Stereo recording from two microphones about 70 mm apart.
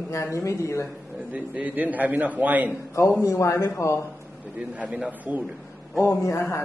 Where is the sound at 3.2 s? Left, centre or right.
Left.